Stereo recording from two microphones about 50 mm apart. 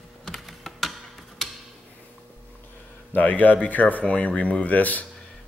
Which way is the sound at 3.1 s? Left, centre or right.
Left.